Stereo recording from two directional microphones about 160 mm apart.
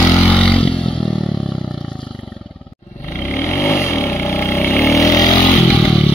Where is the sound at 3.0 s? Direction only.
15° left (ahead or behind).